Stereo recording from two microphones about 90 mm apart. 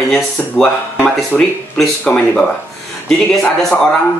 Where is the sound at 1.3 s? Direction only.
5° right (ahead or behind).